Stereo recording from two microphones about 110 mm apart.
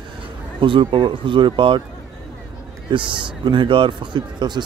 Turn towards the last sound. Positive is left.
turn(degrees=-40)  # may be behind; listen again after turning